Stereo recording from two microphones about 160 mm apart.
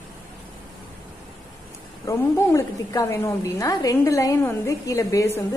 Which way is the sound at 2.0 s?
20° left (ahead or behind).